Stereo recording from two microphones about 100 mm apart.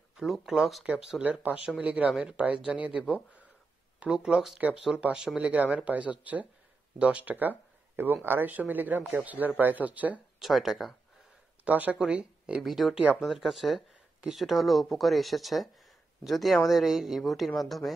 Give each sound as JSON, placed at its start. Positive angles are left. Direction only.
{"t": 0.2, "sound": "speech", "side_deg": 0}
{"t": 10.4, "sound": "speech", "side_deg": 0}
{"t": 11.6, "sound": "speech", "side_deg": -15}